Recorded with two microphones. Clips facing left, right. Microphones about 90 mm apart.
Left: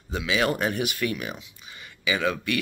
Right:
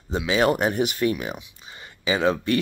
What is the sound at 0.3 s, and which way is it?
Speech, 30° right (ahead or behind).